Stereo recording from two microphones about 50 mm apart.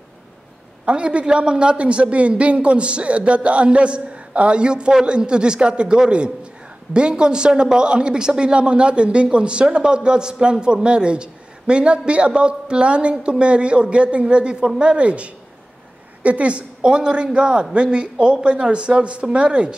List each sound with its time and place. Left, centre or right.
0.8 s a man's voice: right